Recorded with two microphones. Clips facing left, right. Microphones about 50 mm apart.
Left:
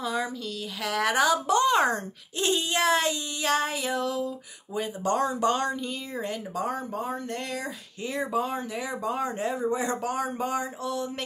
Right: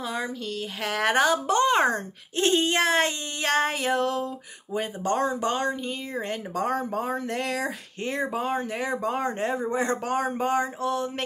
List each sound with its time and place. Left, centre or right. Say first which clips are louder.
0.0 s a sound: left 1 dB; right
0.8 s speech: right 1 dB; right
4.7 s speech: right 1 dB; right
6.5 s speech: right 6 dB; right
8.0 s speech: even; right